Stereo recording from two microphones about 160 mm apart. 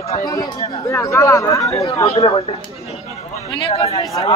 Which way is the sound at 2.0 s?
35° left (ahead or behind).